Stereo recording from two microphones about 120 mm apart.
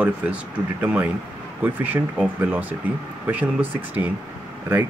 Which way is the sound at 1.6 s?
15° right (ahead or behind).